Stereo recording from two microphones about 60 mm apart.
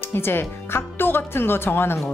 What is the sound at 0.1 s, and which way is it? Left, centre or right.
Speech, left.